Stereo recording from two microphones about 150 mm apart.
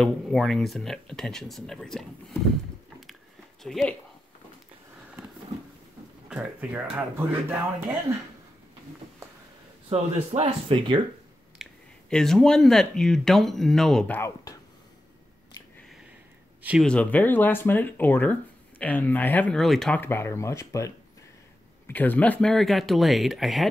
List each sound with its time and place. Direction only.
0.0 s speech: 5° left (ahead or behind)
3.6 s speech: centre (ahead or behind)
6.2 s speech: 5° right (ahead or behind)
9.8 s speech: 45° right (ahead or behind)
11.6 s a sound: 5° right (ahead or behind)
12.1 s speech: 5° left (ahead or behind)
16.8 s speech: 10° left (ahead or behind)
20.0 s speech: 15° left (ahead or behind); by 23.7 s centre (ahead or behind)